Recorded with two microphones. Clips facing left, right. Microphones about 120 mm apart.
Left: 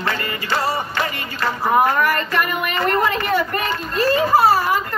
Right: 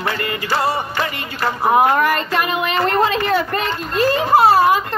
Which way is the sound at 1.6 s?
20° right (ahead or behind).